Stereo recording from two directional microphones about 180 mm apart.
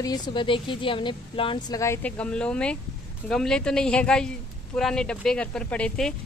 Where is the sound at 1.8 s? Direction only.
10° left (ahead or behind).